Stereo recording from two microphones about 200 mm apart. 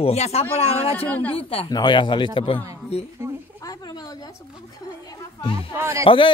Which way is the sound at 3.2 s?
15° right (ahead or behind).